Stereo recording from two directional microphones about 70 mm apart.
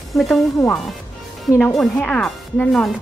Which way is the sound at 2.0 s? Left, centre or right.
Centre.